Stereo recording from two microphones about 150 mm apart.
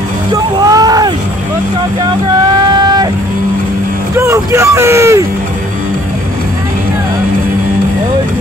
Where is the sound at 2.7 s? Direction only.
25° right (ahead or behind).